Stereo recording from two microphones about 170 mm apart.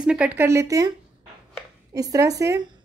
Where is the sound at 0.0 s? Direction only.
5° right (ahead or behind).